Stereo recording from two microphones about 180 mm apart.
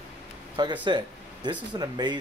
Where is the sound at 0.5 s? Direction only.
25° right (ahead or behind).